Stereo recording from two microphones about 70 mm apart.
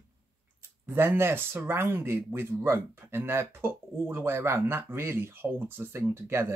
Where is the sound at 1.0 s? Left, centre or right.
Right.